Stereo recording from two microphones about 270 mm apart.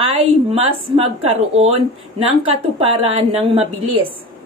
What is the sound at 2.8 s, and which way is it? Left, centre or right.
Speech, centre.